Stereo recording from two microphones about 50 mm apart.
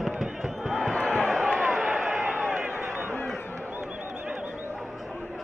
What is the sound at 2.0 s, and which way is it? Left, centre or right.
Run, centre.